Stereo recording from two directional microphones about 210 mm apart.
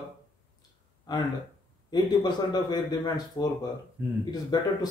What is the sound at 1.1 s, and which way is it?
Speech, 20° left (ahead or behind).